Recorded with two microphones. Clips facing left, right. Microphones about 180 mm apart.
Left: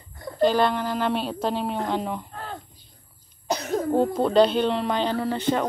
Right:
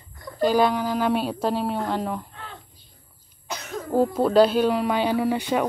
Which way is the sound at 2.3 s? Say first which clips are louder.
Left 6 dB; 40° left (ahead or behind).